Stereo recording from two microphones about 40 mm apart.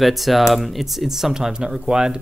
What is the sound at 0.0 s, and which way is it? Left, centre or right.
Speech, centre.